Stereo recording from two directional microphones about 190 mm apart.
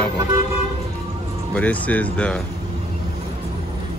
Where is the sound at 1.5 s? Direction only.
10° left (ahead or behind).